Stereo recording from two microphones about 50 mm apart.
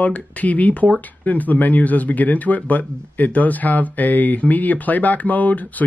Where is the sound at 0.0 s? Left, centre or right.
Left.